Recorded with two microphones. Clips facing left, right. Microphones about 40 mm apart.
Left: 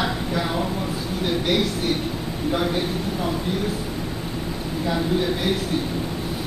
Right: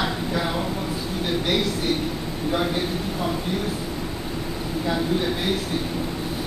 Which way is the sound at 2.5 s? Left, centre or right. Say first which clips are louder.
Even; centre.